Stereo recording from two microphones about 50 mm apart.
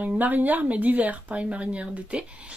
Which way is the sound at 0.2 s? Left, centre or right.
Right.